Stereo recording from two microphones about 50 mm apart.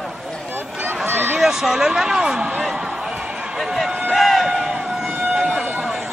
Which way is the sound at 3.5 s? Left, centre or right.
Centre.